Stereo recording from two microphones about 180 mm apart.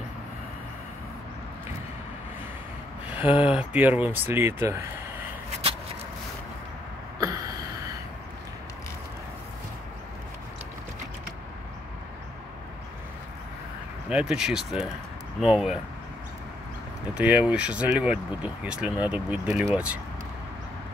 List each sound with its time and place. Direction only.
3.1 s speech: 10° right (ahead or behind)
7.2 s a sound: 20° right (ahead or behind)
14.0 s speech: 5° right (ahead or behind)
17.1 s speech: 10° right (ahead or behind)